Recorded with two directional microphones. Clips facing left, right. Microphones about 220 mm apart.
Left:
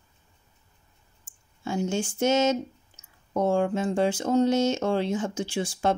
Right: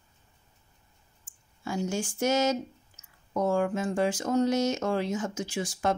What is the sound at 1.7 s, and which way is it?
Speech, 25° left (ahead or behind).